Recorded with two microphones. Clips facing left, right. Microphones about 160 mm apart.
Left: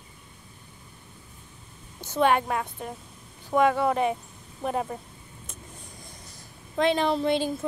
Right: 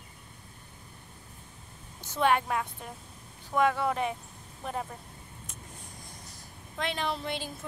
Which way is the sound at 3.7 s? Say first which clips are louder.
Left 6 dB; 40° left (ahead or behind).